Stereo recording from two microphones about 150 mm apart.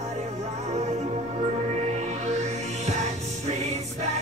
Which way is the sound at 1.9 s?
50° right (ahead or behind).